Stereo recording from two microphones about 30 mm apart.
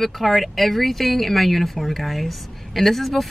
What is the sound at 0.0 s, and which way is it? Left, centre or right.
Speech, centre.